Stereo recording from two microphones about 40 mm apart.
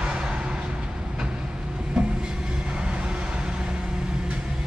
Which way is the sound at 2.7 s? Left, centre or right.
Right.